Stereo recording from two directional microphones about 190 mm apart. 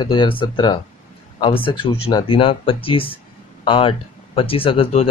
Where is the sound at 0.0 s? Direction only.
25° left (ahead or behind).